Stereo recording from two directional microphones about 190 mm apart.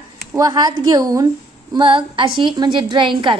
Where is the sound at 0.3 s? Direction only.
20° right (ahead or behind).